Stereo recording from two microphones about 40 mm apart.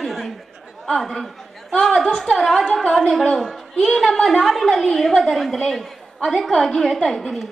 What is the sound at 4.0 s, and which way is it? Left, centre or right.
A woman's voice, centre.